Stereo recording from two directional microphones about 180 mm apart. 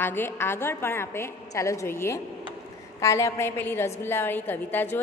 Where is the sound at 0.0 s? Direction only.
10° left (ahead or behind).